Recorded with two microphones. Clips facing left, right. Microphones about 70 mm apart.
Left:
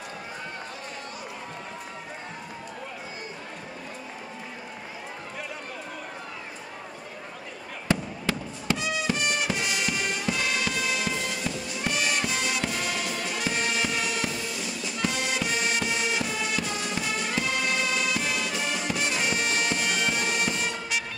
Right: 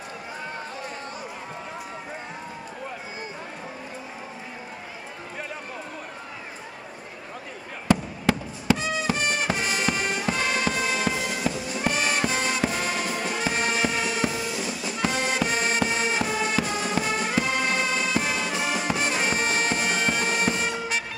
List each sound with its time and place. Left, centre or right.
8.7 s music: right
18.5 s music: centre
18.8 s music: right